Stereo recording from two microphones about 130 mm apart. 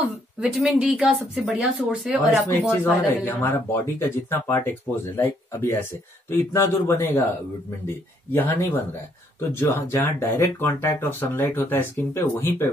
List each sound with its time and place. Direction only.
0.4 s speech: 10° right (ahead or behind)
2.8 s speech: 20° left (ahead or behind)